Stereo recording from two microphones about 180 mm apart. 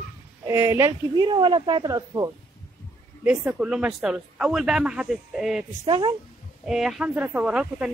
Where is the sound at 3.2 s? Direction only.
5° right (ahead or behind).